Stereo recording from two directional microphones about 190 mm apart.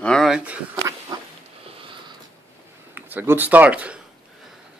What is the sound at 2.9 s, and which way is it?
Speech, 10° right (ahead or behind).